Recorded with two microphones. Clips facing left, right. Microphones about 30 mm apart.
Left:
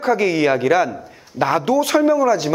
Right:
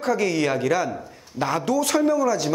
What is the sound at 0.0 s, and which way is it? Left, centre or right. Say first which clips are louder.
Speech: left 5 dB; left.